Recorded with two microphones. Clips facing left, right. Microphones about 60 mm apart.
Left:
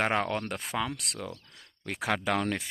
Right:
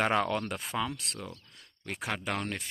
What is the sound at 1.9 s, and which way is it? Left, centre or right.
Speech, left.